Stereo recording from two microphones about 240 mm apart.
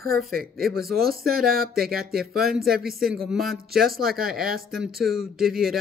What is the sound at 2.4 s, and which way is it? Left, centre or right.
Speech, centre.